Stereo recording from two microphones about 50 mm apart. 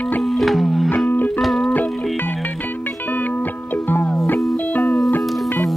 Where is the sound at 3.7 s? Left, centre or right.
Left.